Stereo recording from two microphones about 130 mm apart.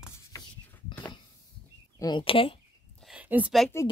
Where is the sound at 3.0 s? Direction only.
10° right (ahead or behind).